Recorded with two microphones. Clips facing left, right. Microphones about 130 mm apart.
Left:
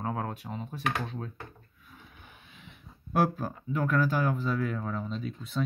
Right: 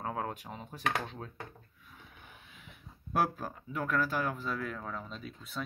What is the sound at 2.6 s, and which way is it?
Speech, centre (ahead or behind).